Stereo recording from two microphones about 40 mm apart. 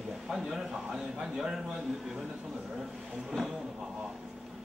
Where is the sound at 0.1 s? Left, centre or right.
Centre.